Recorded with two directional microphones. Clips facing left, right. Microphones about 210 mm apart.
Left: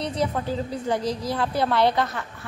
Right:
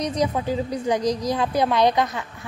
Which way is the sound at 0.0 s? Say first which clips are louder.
Right 3 dB; 15° right (ahead or behind).